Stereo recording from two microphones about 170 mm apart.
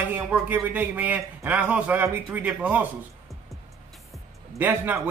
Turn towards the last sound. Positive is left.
turn(degrees=-10)  # may be behind; listen again after turning